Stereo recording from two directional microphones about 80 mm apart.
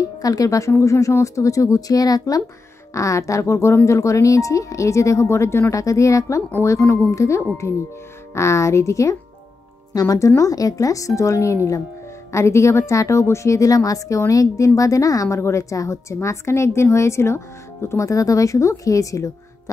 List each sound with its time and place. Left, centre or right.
0.2 s a woman's voice: left